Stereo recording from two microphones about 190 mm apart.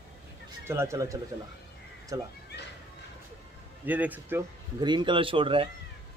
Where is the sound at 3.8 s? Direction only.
10° right (ahead or behind).